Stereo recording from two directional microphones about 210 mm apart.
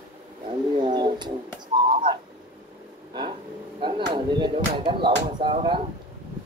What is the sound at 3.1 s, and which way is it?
Vehicle, 20° right (ahead or behind).